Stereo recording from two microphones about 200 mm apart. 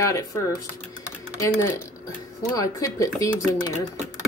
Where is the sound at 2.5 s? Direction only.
15° left (ahead or behind).